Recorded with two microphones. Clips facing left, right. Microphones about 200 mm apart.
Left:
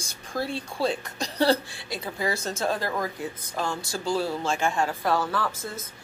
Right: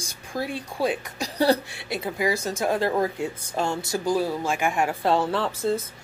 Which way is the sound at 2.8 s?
30° right (ahead or behind).